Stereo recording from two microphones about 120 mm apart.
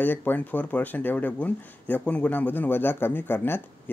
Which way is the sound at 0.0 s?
15° left (ahead or behind).